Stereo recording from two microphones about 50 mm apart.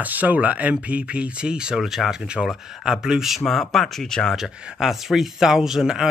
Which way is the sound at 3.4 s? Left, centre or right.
Centre.